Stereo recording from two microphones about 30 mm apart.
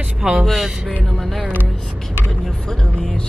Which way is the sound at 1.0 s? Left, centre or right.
Centre.